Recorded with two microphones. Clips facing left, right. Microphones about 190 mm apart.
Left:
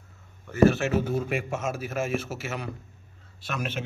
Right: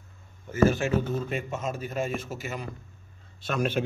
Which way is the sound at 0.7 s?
70° left (ahead or behind).